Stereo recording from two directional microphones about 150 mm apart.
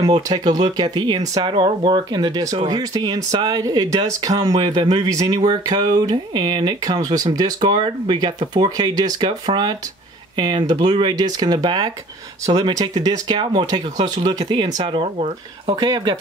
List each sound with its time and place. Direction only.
0.0 s speech: 25° right (ahead or behind)
15.7 s speech: 30° right (ahead or behind)